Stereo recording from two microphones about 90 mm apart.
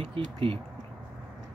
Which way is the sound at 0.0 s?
75° right (ahead or behind).